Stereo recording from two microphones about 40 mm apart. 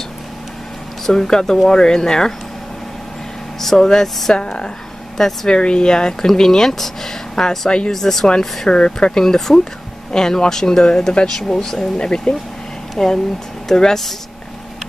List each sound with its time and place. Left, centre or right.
1.0 s speech: centre
3.6 s speech: centre
5.5 s speech: left
7.9 s speech: centre
12.0 s speech: left